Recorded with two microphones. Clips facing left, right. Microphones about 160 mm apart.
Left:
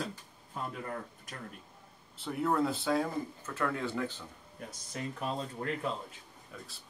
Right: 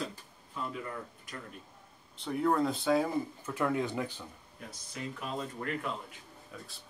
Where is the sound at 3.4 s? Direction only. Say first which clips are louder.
Right 2 dB; 15° right (ahead or behind).